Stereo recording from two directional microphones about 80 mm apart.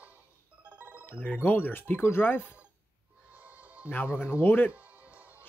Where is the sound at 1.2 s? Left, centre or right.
Left.